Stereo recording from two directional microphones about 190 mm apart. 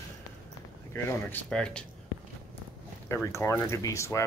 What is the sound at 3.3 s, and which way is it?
Speech, 15° left (ahead or behind).